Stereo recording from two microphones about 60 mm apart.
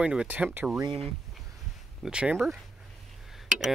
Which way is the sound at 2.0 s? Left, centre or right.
Centre.